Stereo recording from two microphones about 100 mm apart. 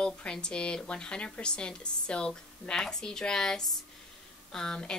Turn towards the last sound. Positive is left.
turn(degrees=5)  # may be behind; listen again after turning